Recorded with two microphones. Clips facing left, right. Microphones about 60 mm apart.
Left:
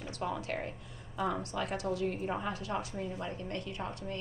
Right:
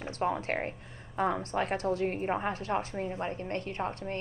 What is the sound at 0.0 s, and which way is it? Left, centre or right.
Speech, right.